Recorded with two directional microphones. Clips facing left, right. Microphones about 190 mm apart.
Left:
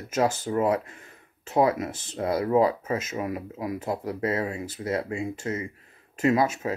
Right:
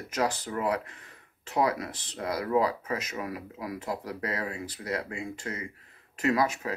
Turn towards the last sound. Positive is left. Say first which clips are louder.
# left 4 dB
turn(degrees=25)  # may be behind; listen again after turning